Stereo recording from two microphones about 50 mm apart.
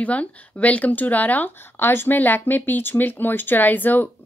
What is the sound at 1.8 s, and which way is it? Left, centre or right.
Speech, left.